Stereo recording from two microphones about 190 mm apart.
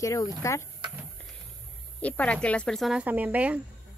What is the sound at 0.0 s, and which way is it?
Speech, 15° left (ahead or behind).